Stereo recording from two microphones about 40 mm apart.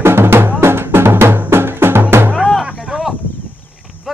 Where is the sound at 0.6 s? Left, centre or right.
Right.